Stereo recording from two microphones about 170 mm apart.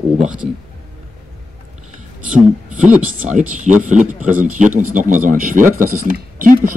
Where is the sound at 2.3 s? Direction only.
50° right (ahead or behind).